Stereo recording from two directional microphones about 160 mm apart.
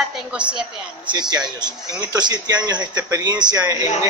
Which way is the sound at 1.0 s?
25° right (ahead or behind).